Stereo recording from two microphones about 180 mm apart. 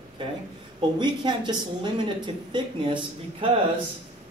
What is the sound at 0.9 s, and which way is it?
Speech, 25° right (ahead or behind).